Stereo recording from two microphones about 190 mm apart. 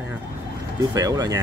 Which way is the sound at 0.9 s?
20° right (ahead or behind).